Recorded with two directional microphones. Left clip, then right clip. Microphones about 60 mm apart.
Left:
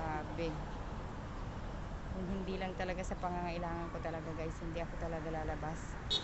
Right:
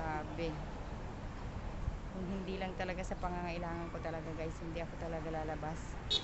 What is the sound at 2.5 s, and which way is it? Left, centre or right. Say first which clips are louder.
Speech: even; centre.